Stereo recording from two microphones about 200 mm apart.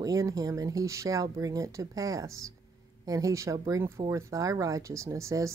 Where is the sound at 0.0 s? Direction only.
15° right (ahead or behind).